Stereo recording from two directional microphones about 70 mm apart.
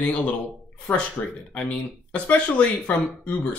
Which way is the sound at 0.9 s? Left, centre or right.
Left.